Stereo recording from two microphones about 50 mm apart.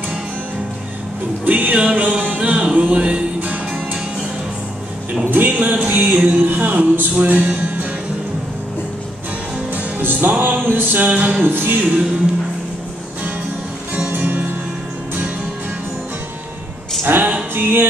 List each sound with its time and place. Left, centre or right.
1.4 s music: right
5.2 s music: right
9.8 s music: right
14.1 s music: right
17.0 s music: right